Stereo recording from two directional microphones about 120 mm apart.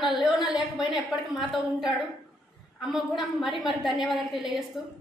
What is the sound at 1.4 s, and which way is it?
A woman's voice, 5° right (ahead or behind).